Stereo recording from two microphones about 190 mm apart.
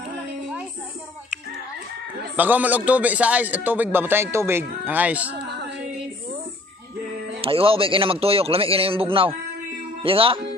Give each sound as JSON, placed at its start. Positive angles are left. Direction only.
{"t": 2.3, "sound": "a man's voice", "side_deg": -10}
{"t": 5.3, "sound": "female singing", "side_deg": -60}
{"t": 7.4, "sound": "a man's voice", "side_deg": -30}